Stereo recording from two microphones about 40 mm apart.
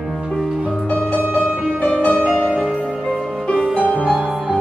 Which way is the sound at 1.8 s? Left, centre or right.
Left.